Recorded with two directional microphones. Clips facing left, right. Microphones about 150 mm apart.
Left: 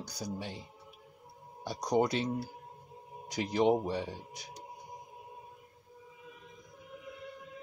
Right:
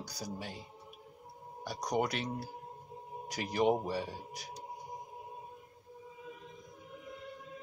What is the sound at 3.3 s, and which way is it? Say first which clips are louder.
Speech: left 2 dB; 20° left (ahead or behind).